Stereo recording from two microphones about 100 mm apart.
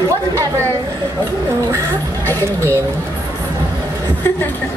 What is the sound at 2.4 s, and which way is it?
Speech, 30° right (ahead or behind).